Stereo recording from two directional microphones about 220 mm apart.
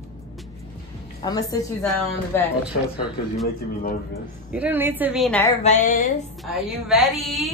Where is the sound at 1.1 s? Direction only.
15° left (ahead or behind).